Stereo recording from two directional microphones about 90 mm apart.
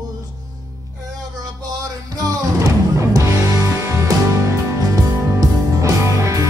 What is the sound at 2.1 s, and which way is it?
Music, 40° right (ahead or behind).